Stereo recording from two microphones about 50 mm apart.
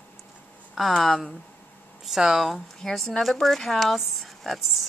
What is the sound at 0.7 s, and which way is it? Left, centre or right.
Speech, centre.